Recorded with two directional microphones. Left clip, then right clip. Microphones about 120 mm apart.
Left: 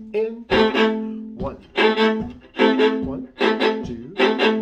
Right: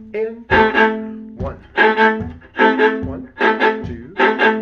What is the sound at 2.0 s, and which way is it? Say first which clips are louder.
Music: right 5 dB; 20° left (ahead or behind).